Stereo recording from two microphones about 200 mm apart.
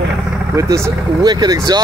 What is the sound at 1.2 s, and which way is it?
Speech, 20° right (ahead or behind).